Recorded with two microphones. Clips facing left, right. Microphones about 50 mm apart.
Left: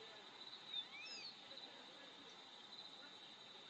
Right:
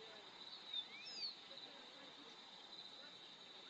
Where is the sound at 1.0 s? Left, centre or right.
Left.